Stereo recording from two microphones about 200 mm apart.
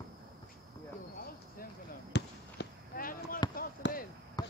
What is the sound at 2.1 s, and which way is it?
Fireworks, 50° left (ahead or behind).